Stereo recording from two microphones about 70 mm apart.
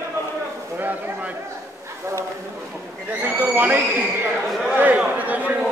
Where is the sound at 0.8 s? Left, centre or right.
Right.